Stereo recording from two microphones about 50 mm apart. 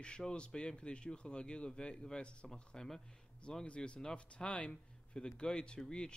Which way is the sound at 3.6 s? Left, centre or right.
Left.